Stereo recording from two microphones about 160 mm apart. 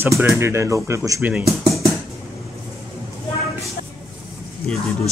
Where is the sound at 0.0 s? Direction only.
15° right (ahead or behind).